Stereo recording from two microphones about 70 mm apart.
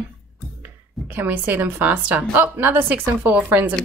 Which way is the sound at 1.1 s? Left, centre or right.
Right.